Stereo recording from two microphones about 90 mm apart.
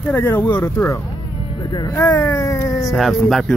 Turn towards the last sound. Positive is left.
turn(degrees=5)  # may be behind; listen again after turning